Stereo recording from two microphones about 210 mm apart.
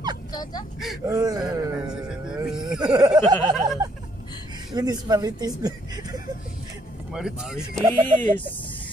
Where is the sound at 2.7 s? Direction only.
20° right (ahead or behind).